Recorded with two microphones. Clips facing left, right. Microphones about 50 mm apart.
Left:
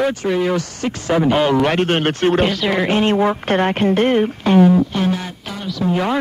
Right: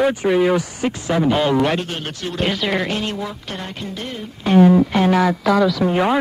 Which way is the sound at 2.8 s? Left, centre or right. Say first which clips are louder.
Left 9 dB; left.